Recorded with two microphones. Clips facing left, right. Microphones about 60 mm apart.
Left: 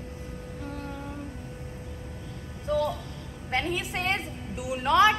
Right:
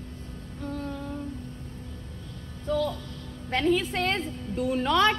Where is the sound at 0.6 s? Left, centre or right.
Centre.